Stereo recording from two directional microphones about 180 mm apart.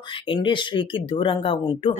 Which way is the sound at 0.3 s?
25° left (ahead or behind).